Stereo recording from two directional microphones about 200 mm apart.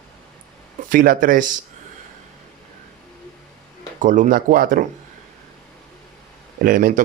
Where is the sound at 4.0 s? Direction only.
40° right (ahead or behind).